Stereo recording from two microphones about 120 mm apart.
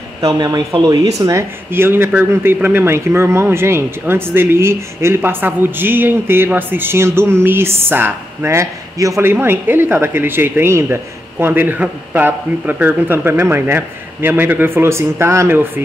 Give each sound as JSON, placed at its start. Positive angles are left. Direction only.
{"t": 0.2, "sound": "speech", "side_deg": -35}